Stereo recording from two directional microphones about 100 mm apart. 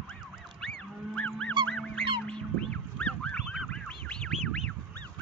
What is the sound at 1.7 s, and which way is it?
Goose, 10° left (ahead or behind).